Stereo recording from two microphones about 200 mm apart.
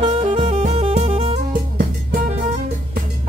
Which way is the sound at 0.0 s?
30° right (ahead or behind).